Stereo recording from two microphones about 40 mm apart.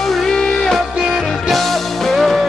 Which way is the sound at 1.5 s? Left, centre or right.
Centre.